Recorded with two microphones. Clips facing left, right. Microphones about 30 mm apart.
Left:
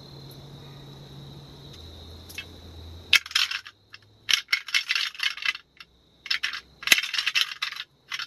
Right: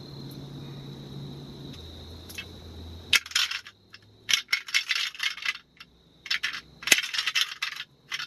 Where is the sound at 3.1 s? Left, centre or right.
Centre.